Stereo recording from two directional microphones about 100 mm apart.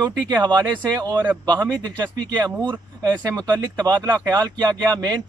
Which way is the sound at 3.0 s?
40° right (ahead or behind).